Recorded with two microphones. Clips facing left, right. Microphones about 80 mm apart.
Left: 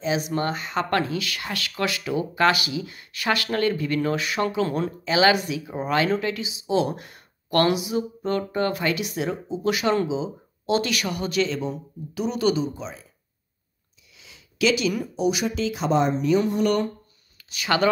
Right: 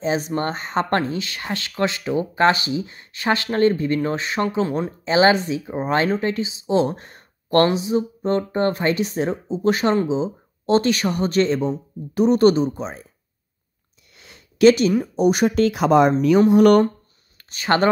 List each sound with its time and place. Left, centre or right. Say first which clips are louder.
0.0 s speech: right 2 dB; right
14.1 s a sound: right 3 dB; right
15.1 s speech: right 9 dB; right
17.4 s speech: right 4 dB; right